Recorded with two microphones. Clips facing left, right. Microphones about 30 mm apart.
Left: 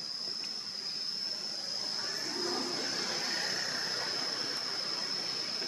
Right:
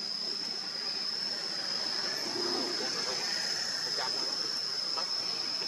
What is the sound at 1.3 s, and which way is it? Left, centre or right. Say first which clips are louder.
Vehicle: right 3 dB; right.